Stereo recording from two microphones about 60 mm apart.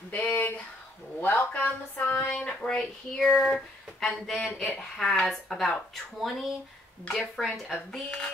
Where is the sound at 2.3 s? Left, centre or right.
Centre.